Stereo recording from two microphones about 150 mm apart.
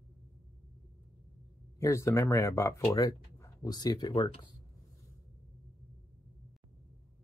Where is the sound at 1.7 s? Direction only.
20° left (ahead or behind).